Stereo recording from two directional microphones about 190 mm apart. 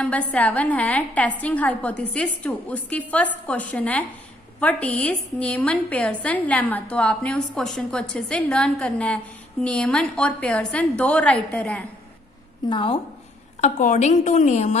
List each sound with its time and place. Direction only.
0.0 s a woman's voice: 5° left (ahead or behind)
12.6 s a woman's voice: 25° left (ahead or behind)
13.6 s a woman's voice: 40° left (ahead or behind)